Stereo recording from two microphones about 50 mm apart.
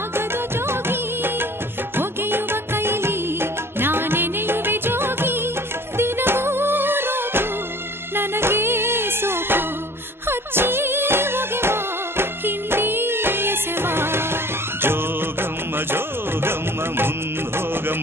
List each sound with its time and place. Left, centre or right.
0.7 s music of bollywood: right
2.0 s music: right
16.4 s music: right